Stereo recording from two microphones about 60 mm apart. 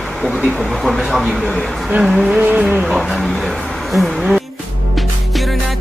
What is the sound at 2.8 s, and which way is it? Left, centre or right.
Speech, centre.